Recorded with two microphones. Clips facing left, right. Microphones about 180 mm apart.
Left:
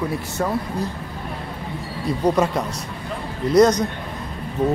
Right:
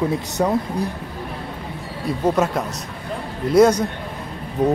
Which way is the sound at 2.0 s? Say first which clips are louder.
Even; 5° right (ahead or behind).